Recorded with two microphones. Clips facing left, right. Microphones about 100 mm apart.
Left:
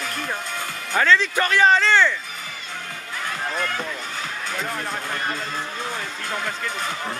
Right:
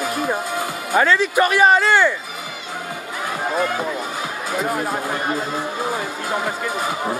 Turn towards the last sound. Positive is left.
turn(degrees=-10)  # may be behind; listen again after turning